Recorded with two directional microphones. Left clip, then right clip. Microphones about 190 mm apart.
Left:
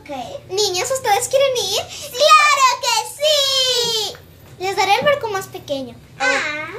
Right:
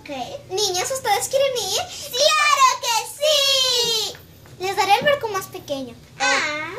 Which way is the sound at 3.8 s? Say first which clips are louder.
Left 1 dB; 15° left (ahead or behind).